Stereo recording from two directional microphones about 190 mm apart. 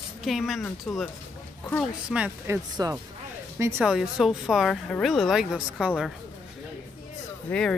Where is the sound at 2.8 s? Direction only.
20° right (ahead or behind).